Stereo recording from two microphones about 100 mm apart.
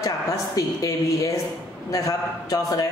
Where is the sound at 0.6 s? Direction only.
35° left (ahead or behind).